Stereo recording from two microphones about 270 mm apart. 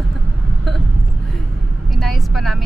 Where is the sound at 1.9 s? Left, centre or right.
Centre.